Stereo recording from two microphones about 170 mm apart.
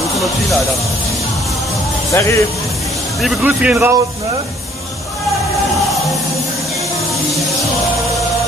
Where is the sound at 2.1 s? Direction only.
15° left (ahead or behind).